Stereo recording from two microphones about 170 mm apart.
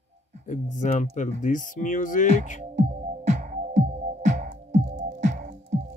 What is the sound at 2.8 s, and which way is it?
Music, 40° right (ahead or behind).